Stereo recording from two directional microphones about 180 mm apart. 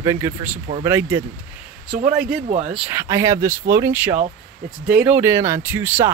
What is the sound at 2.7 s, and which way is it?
Speech, 10° right (ahead or behind).